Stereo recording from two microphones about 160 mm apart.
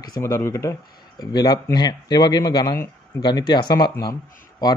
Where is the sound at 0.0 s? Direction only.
20° left (ahead or behind).